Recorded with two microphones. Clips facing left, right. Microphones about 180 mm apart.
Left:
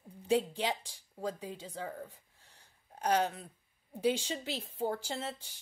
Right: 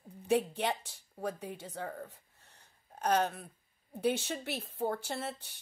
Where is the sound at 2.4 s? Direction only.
65° right (ahead or behind).